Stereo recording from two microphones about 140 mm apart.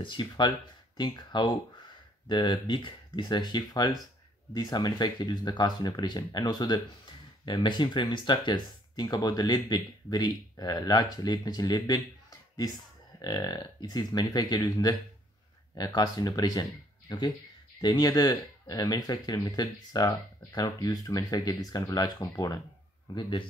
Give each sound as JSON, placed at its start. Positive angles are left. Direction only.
{"t": 0.0, "sound": "speech", "side_deg": 35}